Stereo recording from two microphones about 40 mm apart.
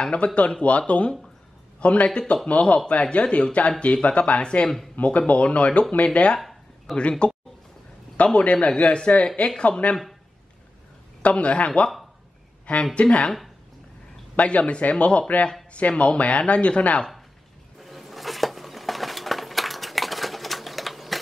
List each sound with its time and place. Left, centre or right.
0.0 s a man's voice: left
11.2 s speech: left
12.9 s speech: left
14.3 s speech: left
17.7 s a sound: centre